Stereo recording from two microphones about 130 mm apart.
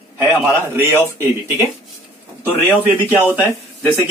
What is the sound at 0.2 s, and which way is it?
Speech, 20° right (ahead or behind).